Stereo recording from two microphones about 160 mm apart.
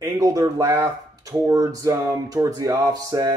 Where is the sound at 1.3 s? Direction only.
20° right (ahead or behind).